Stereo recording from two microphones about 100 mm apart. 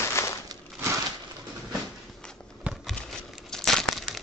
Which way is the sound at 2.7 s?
15° right (ahead or behind).